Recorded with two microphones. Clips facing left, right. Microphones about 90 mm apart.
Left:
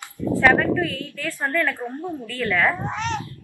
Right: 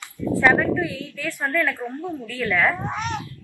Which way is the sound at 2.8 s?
15° right (ahead or behind).